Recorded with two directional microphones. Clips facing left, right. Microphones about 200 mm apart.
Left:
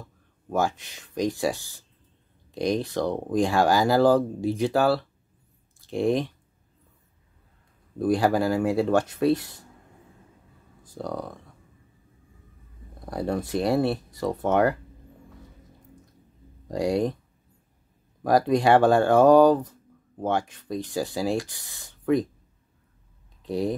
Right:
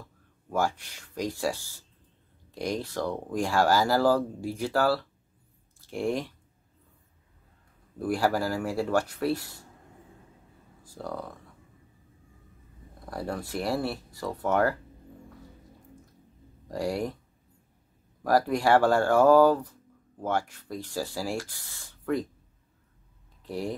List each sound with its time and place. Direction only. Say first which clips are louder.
0.5 s speech: left 3 dB; 20° left (ahead or behind)
8.0 s speech: left 5 dB; 20° left (ahead or behind)
10.9 s speech: left 4 dB; 15° left (ahead or behind)
13.0 s speech: left 6 dB; 20° left (ahead or behind)
16.6 s speech: left 6 dB; 15° left (ahead or behind)
18.2 s speech: left 4 dB; 20° left (ahead or behind)
23.4 s speech: left 6 dB; 15° left (ahead or behind)